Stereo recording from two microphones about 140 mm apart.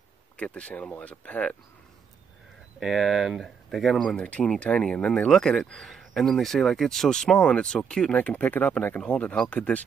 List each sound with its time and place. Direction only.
0.4 s speech: 10° left (ahead or behind)
2.8 s speech: centre (ahead or behind)